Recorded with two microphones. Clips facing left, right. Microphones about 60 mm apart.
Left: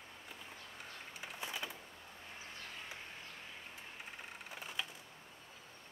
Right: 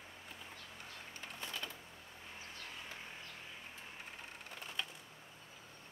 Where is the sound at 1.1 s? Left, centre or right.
Centre.